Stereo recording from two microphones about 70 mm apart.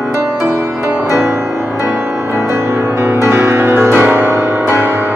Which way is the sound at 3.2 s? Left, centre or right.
Right.